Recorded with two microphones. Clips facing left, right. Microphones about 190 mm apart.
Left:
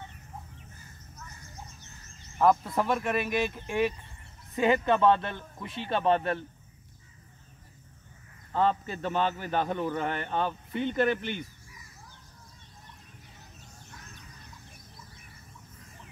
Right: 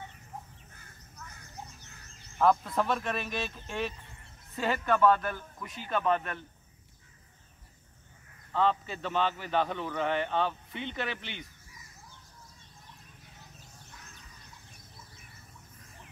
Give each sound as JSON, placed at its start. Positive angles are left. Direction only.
{"t": 2.6, "sound": "a man's voice", "side_deg": 10}
{"t": 8.5, "sound": "speech", "side_deg": 45}